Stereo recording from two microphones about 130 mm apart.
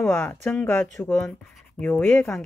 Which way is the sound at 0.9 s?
Centre (ahead or behind).